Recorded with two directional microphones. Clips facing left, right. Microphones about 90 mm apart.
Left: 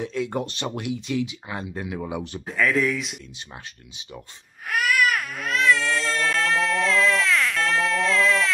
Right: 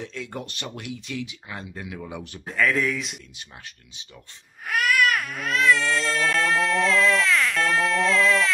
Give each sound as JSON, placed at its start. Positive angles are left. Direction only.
{"t": 0.0, "sound": "speech", "side_deg": 15}
{"t": 0.3, "sound": "speech", "side_deg": 25}
{"t": 2.0, "sound": "speech", "side_deg": 15}
{"t": 2.4, "sound": "speech", "side_deg": 0}
{"t": 4.6, "sound": "baby cry", "side_deg": 0}